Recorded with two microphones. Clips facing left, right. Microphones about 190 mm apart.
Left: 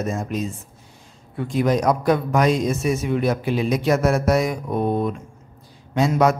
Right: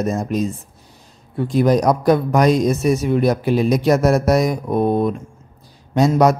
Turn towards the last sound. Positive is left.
turn(degrees=-40)  # may be behind; listen again after turning